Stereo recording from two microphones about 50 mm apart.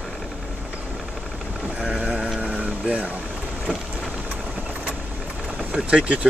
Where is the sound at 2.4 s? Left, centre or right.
Right.